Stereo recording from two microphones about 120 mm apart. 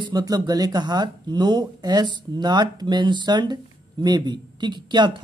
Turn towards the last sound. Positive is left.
turn(degrees=-40)  # may be behind; listen again after turning